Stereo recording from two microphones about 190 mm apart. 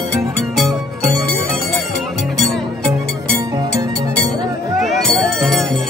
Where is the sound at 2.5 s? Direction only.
Centre (ahead or behind).